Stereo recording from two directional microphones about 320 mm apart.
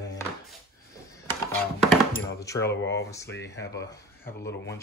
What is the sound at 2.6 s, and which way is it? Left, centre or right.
Speech, left.